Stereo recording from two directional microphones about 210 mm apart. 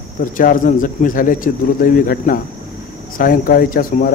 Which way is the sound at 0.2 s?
40° left (ahead or behind).